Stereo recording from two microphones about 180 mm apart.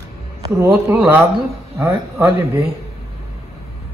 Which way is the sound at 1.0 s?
15° right (ahead or behind).